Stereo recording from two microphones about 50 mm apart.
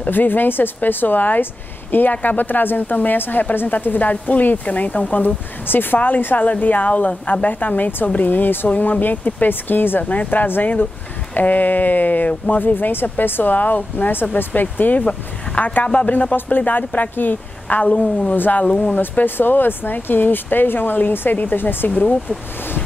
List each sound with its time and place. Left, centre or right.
0.0 s speech: left
18.6 s speech: left
18.9 s speech: left